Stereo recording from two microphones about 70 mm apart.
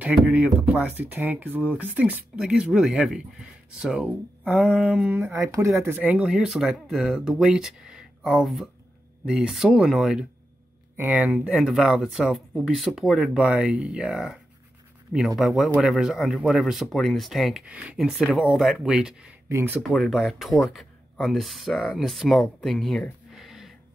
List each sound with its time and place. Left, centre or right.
0.1 s speech: centre
2.3 s speech: centre
5.3 s speech: right
6.0 s speech: centre
11.1 s speech: centre
13.5 s speech: centre
17.6 s speech: centre
17.9 s speech: centre
19.5 s speech: right
19.9 s speech: centre
23.3 s a sound: centre